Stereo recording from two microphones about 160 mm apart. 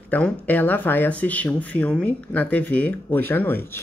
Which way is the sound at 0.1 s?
10° left (ahead or behind).